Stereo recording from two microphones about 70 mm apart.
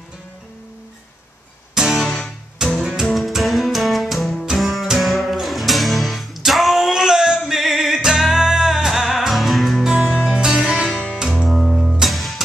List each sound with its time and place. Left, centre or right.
1.8 s music: centre
10.9 s music: centre
11.4 s music: centre